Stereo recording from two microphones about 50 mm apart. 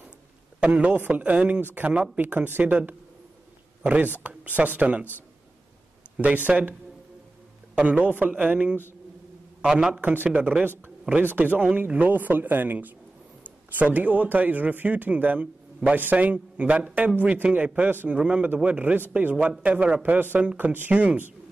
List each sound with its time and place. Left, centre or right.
0.6 s speech: right
1.7 s speech: right
2.6 s speech: right
6.3 s speech: right
7.9 s speech: right
9.7 s a man's voice: centre
10.0 s speech: right
10.3 s speech: right
11.2 s a man's voice: right
18.1 s speech: right
18.9 s speech: right